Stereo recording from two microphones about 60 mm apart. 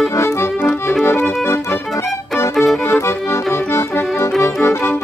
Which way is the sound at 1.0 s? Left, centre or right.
Left.